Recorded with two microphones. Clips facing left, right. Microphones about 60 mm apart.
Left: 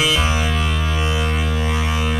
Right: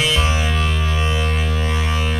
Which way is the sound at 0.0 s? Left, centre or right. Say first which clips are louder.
Left 1 dB; centre.